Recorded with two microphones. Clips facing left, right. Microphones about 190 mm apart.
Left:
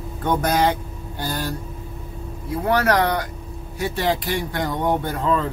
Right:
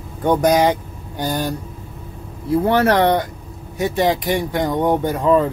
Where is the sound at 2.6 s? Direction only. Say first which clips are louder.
Right 3 dB; 25° right (ahead or behind).